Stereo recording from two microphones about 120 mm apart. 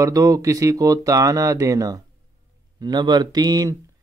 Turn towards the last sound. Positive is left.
turn(degrees=-30)  # may be behind; listen again after turning